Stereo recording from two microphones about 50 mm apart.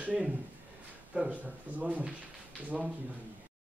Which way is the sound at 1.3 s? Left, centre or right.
Right.